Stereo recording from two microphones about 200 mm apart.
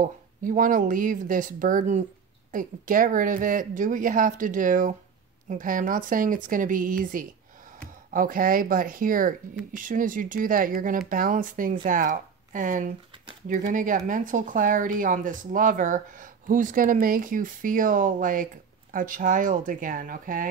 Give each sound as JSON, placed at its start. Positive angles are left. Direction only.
{"t": 0.0, "sound": "speech", "side_deg": -40}